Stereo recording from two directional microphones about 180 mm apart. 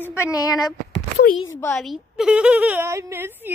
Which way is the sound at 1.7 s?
Centre (ahead or behind).